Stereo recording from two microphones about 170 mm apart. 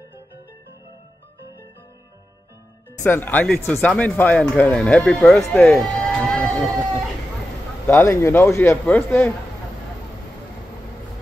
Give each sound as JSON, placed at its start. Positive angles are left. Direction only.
{"t": 3.0, "sound": "a man's voice", "side_deg": 10}
{"t": 7.8, "sound": "a man's voice", "side_deg": 15}